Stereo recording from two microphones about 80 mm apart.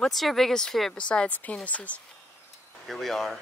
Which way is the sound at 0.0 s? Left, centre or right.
Centre.